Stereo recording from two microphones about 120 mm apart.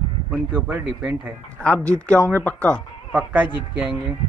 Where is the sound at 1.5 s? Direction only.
10° left (ahead or behind).